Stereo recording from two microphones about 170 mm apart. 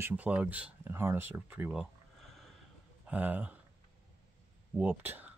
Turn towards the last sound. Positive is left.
turn(degrees=-10)  # may be behind; listen again after turning